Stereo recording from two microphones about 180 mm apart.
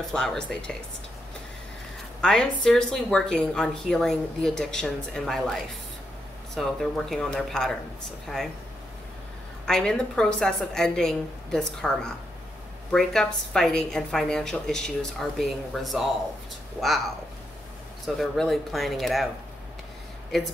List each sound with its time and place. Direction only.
0.1 s a woman's voice: 5° left (ahead or behind)
2.2 s a woman's voice: 5° left (ahead or behind)
9.7 s a woman's voice: 5° left (ahead or behind)
18.0 s a woman's voice: centre (ahead or behind)